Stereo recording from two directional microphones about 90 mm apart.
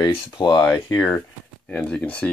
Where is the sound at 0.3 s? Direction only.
55° left (ahead or behind).